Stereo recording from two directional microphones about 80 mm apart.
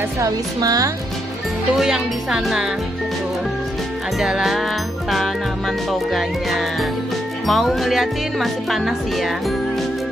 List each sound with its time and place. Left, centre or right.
0.2 s speech: right
1.8 s speech: centre
4.2 s speech: centre
5.9 s speech: centre